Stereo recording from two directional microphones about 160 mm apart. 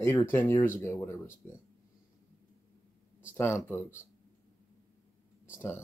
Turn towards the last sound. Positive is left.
turn(degrees=15)  # may be behind; listen again after turning